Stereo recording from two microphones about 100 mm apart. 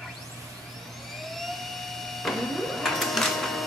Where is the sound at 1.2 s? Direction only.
Centre (ahead or behind).